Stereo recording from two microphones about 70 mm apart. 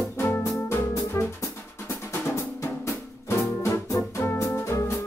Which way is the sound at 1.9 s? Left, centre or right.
Left.